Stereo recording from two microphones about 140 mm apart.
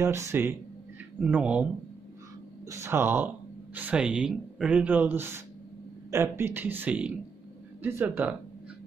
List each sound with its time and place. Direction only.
0.0 s speech: 20° right (ahead or behind)
2.7 s speech: 20° right (ahead or behind)